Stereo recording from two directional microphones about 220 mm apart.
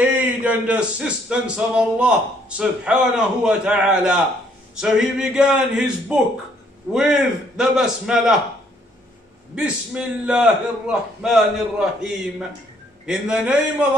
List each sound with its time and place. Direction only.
0.0 s speech: 5° right (ahead or behind)
9.6 s speech: 5° right (ahead or behind)